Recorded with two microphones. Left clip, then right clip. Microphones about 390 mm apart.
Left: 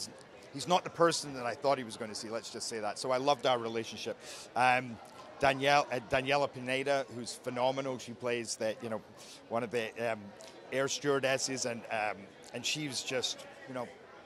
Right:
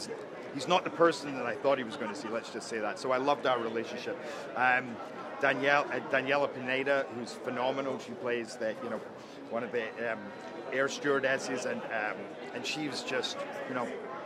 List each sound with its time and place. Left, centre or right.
0.6 s speech: left
4.6 s a man's voice: left
7.5 s speech: left
10.7 s a man's voice: left
12.6 s speech: left